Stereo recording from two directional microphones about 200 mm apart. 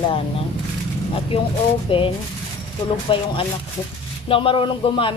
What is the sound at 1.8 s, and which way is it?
Speech, 25° left (ahead or behind).